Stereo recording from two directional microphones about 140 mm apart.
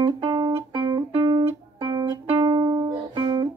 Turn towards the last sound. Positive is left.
turn(degrees=-35)  # may be behind; listen again after turning